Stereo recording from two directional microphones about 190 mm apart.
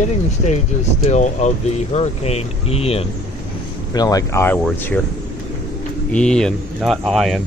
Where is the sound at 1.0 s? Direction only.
40° left (ahead or behind).